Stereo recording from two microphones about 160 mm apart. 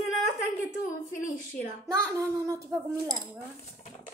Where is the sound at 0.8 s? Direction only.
55° left (ahead or behind).